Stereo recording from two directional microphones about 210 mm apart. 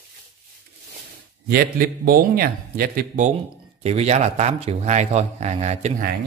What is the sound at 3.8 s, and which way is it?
Speech, 30° right (ahead or behind).